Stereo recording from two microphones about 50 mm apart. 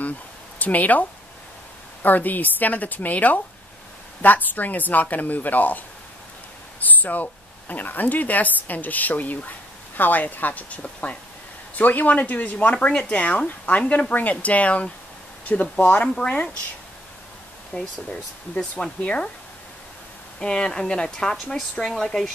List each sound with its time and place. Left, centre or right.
0.6 s speech: left
2.0 s speech: left
17.7 s speech: left
19.0 s speech: left
20.3 s speech: centre